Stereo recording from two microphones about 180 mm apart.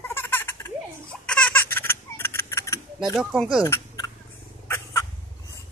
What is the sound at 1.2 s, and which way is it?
Baby laughter, 5° left (ahead or behind).